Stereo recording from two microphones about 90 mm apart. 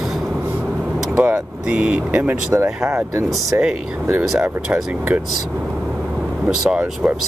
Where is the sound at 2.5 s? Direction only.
30° right (ahead or behind).